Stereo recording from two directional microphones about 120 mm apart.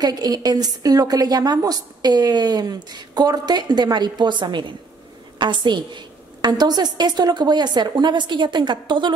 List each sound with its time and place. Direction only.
0.0 s a woman's voice: 35° right (ahead or behind)